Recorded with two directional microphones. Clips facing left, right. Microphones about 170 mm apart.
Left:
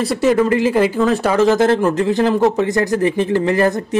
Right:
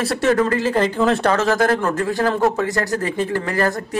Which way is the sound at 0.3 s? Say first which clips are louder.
Left 3 dB; 15° left (ahead or behind).